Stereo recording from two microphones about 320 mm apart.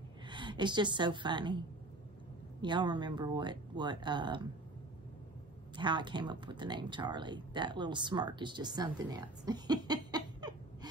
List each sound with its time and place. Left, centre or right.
0.3 s a woman's voice: centre
2.6 s speech: centre
5.8 s speech: centre